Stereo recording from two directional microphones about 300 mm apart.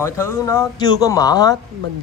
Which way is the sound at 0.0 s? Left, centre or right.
Centre.